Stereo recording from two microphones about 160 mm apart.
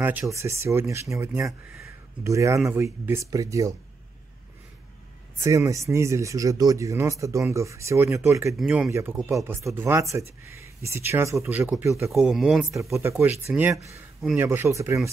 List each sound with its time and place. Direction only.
0.0 s speech: 10° right (ahead or behind)
5.4 s speech: 20° right (ahead or behind)
12.1 s speech: centre (ahead or behind)
12.7 s speech: 15° right (ahead or behind)